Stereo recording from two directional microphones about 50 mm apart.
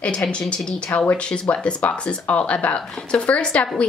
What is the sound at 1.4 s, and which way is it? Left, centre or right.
Speech, left.